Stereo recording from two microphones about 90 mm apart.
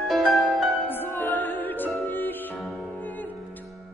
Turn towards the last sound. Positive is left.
turn(degrees=20)  # may be behind; listen again after turning